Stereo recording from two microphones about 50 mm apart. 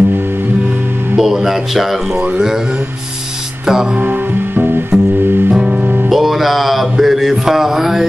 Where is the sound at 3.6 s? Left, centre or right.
Centre.